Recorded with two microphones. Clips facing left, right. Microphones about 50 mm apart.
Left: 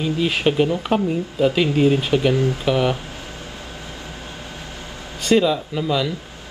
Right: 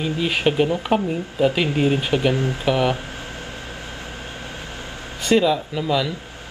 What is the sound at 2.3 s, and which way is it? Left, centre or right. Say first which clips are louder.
Speech: left 2 dB; right.